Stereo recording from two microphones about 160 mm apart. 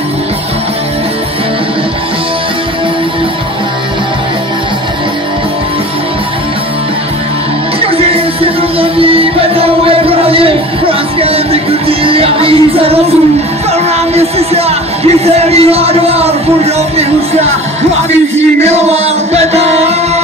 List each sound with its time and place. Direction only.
8.1 s music: 35° right (ahead or behind)
14.1 s music: 40° right (ahead or behind)
18.6 s music: 40° right (ahead or behind)